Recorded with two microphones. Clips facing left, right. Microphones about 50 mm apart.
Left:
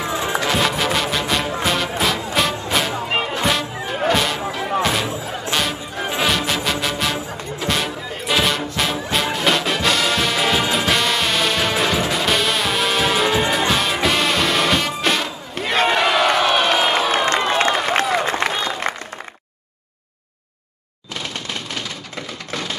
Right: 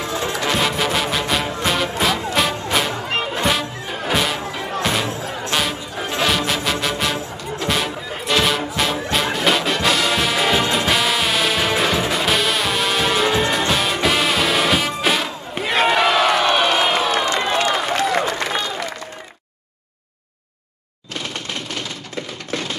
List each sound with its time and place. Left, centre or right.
0.0 s music: centre
0.4 s music: centre
3.4 s music: centre
17.5 s a sound: left
18.2 s applause: left